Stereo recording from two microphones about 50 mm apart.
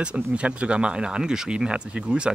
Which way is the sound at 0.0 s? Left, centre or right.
Right.